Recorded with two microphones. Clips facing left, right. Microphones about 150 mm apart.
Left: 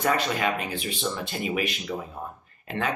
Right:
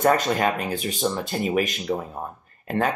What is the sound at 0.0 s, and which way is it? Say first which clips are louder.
Speech: right 5 dB; 45° right (ahead or behind).